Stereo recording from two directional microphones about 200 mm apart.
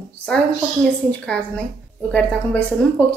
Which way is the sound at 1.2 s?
5° left (ahead or behind).